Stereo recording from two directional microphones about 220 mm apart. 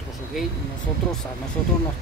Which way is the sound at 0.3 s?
Centre (ahead or behind).